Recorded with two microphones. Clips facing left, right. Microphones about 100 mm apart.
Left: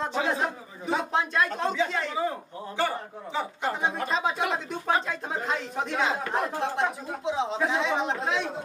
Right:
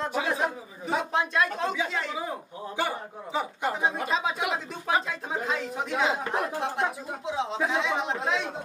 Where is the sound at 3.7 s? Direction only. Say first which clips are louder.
Right 1 dB; 5° right (ahead or behind).